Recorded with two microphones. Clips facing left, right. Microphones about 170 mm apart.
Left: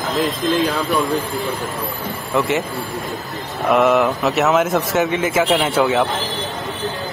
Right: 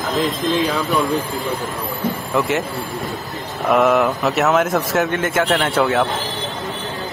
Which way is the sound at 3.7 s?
Centre (ahead or behind).